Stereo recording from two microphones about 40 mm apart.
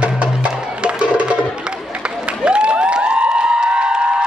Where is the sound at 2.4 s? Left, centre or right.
Right.